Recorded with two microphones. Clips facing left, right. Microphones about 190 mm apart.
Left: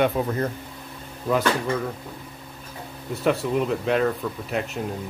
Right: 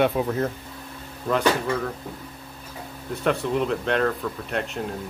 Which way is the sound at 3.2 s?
5° left (ahead or behind).